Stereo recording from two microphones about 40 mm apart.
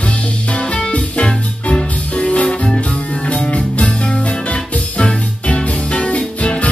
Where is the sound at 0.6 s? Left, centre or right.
Left.